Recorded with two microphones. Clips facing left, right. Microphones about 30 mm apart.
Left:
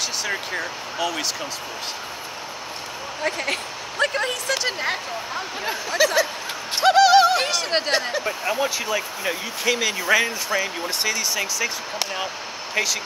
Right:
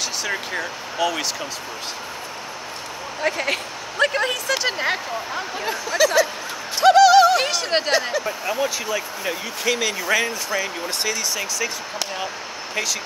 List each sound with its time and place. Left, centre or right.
0.2 s speech: centre
3.2 s speech: centre
5.7 s speech: centre
6.8 s a sound: centre
7.4 s speech: centre
8.1 s speech: centre